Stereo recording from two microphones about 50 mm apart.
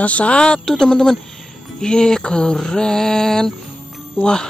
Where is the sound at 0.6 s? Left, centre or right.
Centre.